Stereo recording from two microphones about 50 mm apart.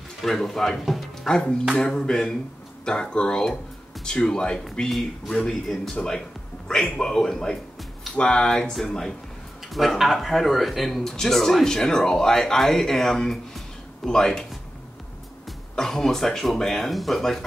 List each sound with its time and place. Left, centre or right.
0.2 s speech: centre
1.3 s speech: centre
4.8 s speech: centre
15.7 s speech: centre